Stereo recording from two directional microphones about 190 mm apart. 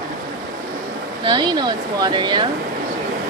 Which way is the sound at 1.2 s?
25° right (ahead or behind).